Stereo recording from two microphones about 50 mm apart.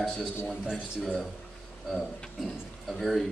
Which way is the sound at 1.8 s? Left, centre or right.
Centre.